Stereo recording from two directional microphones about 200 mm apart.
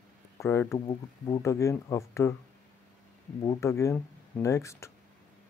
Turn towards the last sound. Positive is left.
turn(degrees=15)  # may be behind; listen again after turning